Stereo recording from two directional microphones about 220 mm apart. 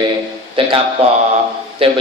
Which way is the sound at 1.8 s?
25° right (ahead or behind).